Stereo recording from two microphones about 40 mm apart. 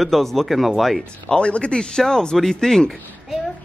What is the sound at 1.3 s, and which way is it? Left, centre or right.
Speech, left.